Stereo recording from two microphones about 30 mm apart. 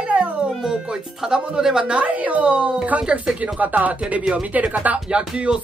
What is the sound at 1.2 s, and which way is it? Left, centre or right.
Speech, centre.